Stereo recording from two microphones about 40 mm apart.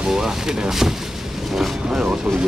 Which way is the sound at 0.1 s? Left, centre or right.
Centre.